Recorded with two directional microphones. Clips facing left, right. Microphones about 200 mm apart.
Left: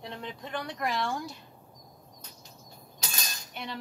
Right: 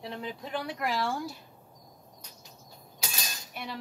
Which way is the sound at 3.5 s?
5° right (ahead or behind).